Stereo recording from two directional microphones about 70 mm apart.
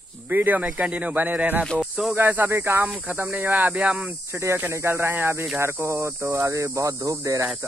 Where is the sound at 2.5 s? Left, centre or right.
Right.